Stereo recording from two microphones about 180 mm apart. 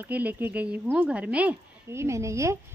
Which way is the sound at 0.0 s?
10° right (ahead or behind).